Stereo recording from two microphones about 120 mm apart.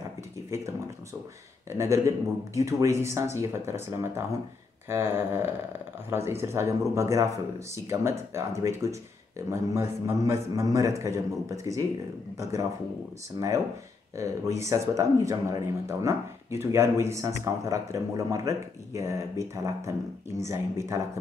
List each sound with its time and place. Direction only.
1.7 s speech: 25° right (ahead or behind)
13.4 s speech: 35° right (ahead or behind)
14.1 s speech: 25° right (ahead or behind)